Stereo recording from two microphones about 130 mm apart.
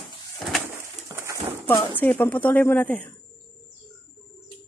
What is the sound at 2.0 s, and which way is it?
Speech, 15° left (ahead or behind).